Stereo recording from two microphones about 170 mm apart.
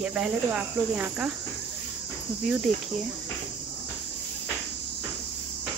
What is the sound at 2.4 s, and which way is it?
Speech, 5° right (ahead or behind).